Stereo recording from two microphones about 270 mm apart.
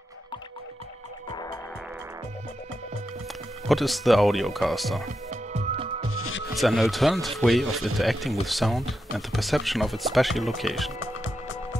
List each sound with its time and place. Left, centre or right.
1.3 s music: centre
3.6 s speech: centre
5.3 s music: right
6.1 s music: left
6.5 s speech: centre
11.0 s music: left